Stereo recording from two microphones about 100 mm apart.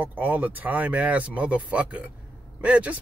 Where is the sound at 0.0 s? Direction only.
15° right (ahead or behind).